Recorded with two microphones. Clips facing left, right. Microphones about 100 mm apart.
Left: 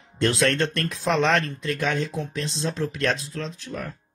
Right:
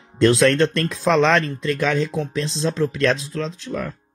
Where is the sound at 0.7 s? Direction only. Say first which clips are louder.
Right 5 dB; 90° right.